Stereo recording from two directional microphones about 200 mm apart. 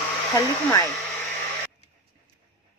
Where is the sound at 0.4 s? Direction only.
15° left (ahead or behind).